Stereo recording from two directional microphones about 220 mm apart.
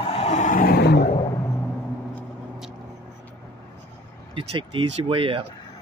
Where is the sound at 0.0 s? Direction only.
25° left (ahead or behind); by 1.0 s 45° left (ahead or behind).